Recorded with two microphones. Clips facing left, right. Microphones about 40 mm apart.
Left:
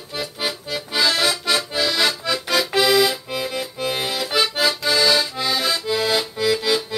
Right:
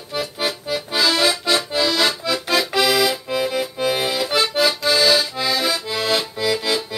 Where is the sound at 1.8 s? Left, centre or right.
Centre.